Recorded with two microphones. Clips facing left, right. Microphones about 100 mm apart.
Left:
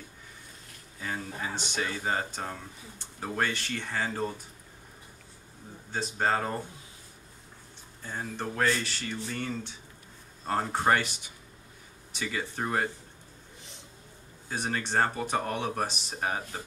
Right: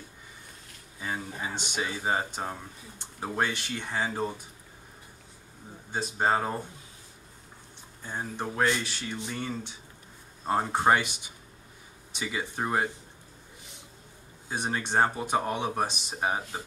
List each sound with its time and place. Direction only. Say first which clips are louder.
0.9 s a sound: right 1 dB; 10° right (ahead or behind)
1.6 s speech: right 1 dB; 10° right (ahead or behind)
5.9 s speech: right 2 dB; 15° right (ahead or behind)
8.0 s speech: right 1 dB; 15° right (ahead or behind)
12.2 s speech: right 1 dB; 15° right (ahead or behind)
14.5 s speech: right 1 dB; 15° right (ahead or behind)